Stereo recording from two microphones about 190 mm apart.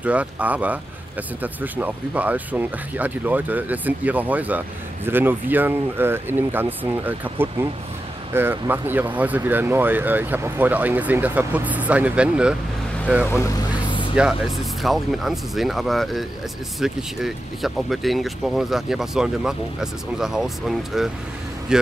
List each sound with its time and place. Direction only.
0.0 s speech: 5° right (ahead or behind)
13.4 s vehicle: 20° left (ahead or behind)
14.1 s speech: 5° right (ahead or behind)